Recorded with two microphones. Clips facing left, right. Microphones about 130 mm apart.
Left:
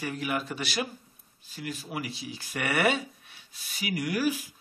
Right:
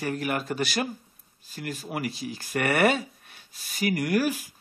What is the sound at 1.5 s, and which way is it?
Mantra, 50° right (ahead or behind).